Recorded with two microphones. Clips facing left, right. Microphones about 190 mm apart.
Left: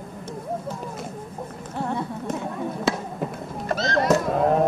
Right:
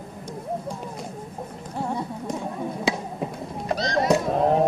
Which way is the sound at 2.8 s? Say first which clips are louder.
Left 1 dB; centre (ahead or behind).